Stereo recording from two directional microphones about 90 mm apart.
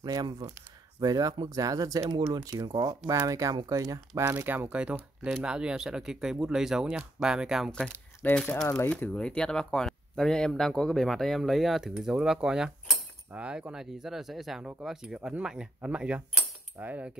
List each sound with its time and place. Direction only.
0.0 s speech: 50° right (ahead or behind)
2.5 s speech: 55° right (ahead or behind)
3.2 s speech: 40° right (ahead or behind)
4.3 s speech: 25° right (ahead or behind); by 7.7 s 5° right (ahead or behind)
8.4 s speech: 10° left (ahead or behind)
14.6 s speech: 15° right (ahead or behind)